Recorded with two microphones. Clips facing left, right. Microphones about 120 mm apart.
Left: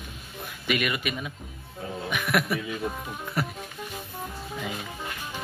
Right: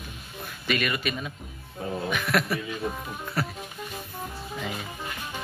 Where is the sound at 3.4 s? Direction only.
15° left (ahead or behind).